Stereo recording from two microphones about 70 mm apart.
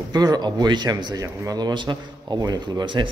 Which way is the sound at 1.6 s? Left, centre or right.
Right.